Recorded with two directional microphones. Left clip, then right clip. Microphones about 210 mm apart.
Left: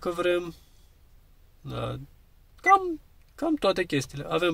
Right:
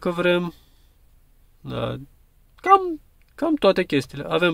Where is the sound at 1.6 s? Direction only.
25° right (ahead or behind).